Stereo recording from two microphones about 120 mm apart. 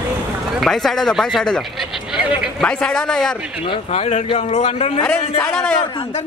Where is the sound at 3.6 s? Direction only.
50° left (ahead or behind).